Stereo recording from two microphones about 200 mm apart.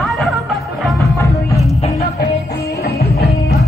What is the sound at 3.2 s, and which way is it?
Music, 50° left (ahead or behind).